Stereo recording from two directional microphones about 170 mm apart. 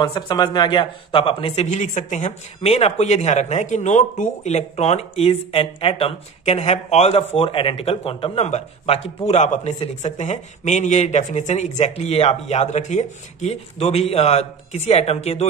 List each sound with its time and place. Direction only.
0.0 s speech: 25° left (ahead or behind)